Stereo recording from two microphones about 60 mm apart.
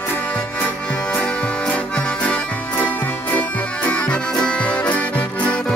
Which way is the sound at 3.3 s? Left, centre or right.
Left.